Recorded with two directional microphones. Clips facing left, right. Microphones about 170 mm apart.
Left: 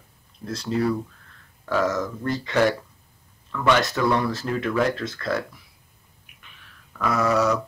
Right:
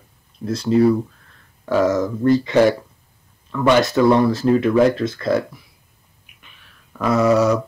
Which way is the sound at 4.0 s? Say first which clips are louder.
Right 8 dB; 25° right (ahead or behind).